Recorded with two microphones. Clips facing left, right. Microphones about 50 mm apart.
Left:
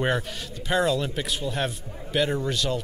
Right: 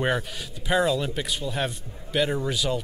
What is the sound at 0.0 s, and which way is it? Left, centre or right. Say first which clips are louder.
Speech: even; centre.